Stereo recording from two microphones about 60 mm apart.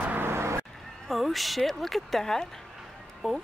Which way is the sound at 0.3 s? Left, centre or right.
Right.